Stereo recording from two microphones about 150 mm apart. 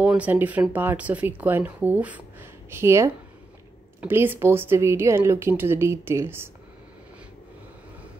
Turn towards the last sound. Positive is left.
turn(degrees=-15)  # may be behind; listen again after turning